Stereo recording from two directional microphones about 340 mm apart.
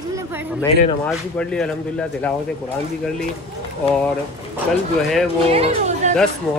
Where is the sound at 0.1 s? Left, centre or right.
Centre.